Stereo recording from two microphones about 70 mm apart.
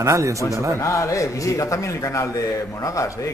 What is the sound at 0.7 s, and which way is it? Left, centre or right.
Speech, left.